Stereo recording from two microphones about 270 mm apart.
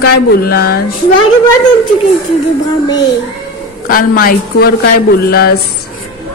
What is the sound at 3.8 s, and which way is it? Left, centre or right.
A woman's voice, left.